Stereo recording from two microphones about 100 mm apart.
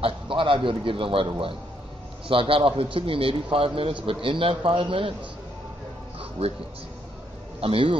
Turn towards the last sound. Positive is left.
turn(degrees=-65)  # may be behind; listen again after turning